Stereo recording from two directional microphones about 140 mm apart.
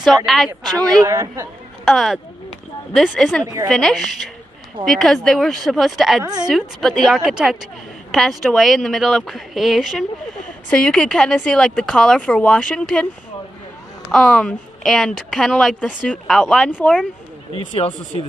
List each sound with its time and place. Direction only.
0.0 s a woman's voice: centre (ahead or behind)
0.5 s a woman's voice: 25° right (ahead or behind)
1.9 s a woman's voice: centre (ahead or behind)
6.2 s a woman's voice: 30° right (ahead or behind)
6.5 s a woman's voice: centre (ahead or behind)
14.1 s a woman's voice: 5° left (ahead or behind)
17.6 s speech: 45° left (ahead or behind)